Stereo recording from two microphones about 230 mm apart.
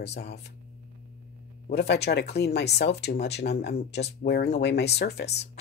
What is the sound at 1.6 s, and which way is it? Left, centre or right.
A woman's voice, left.